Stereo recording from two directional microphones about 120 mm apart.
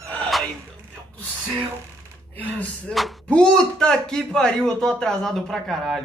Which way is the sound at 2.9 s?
Centre (ahead or behind).